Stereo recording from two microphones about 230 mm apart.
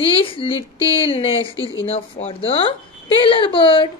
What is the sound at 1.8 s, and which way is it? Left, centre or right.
A woman's voice, left.